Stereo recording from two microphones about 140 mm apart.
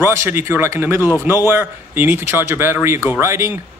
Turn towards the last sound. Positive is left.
turn(degrees=-20)  # may be behind; listen again after turning